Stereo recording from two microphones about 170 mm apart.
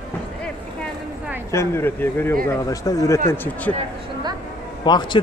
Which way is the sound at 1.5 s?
15° left (ahead or behind).